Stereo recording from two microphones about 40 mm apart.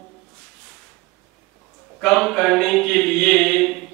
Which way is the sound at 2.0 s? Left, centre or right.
Centre.